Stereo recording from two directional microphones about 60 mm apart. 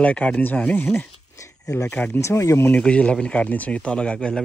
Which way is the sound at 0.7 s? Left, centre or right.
Left.